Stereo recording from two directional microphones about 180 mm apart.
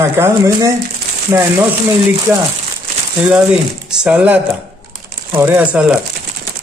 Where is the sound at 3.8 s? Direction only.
10° right (ahead or behind).